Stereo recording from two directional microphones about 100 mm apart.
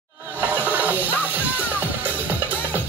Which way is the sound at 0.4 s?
15° right (ahead or behind).